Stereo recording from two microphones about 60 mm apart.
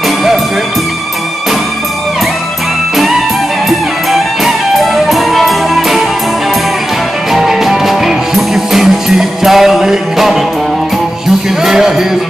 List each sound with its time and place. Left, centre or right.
3.6 s music: centre
7.3 s music: centre
11.6 s music: centre